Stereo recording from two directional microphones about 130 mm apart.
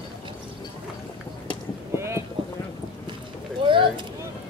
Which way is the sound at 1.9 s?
20° right (ahead or behind).